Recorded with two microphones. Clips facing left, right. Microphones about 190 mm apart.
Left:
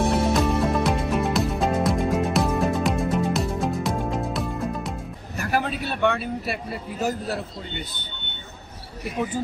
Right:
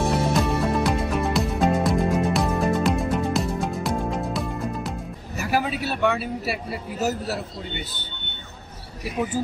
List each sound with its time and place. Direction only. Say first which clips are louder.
0.1 s music: left 1 dB; centre (ahead or behind)